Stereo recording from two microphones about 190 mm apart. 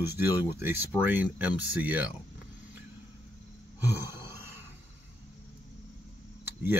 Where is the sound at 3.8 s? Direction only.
15° right (ahead or behind).